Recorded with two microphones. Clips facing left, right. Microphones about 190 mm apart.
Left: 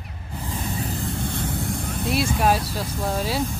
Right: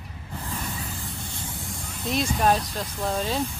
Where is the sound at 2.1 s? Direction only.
5° left (ahead or behind).